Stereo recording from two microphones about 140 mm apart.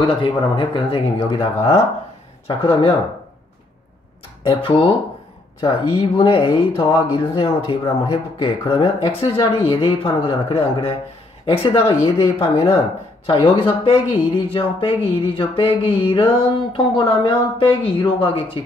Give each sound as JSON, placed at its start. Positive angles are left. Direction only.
{"t": 0.0, "sound": "speech", "side_deg": 35}
{"t": 4.4, "sound": "speech", "side_deg": 40}